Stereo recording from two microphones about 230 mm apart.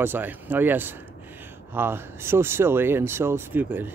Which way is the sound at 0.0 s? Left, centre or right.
Centre.